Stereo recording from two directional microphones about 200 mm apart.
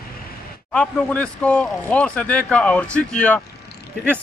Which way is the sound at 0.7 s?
5° left (ahead or behind).